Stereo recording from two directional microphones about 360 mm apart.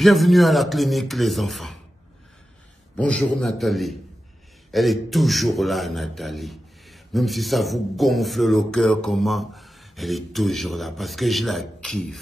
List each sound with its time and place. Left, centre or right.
0.0 s a man's voice: centre
3.0 s a man's voice: centre